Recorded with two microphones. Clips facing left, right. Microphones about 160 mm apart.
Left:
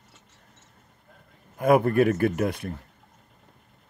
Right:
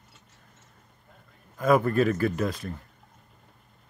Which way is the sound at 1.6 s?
55° left (ahead or behind).